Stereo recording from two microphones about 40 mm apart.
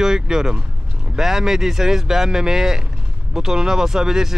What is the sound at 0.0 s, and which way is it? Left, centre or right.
Speech, centre.